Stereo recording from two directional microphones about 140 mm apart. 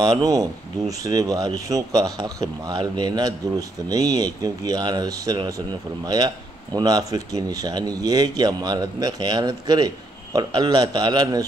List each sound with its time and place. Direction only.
0.0 s speech: 25° right (ahead or behind)